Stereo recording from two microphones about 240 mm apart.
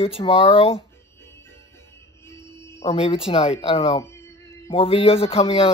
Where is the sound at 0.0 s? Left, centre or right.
Left.